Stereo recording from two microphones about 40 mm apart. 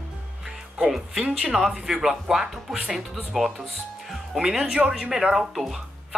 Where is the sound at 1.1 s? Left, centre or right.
Right.